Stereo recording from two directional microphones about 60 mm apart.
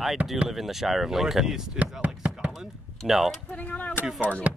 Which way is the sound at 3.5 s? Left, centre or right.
Left.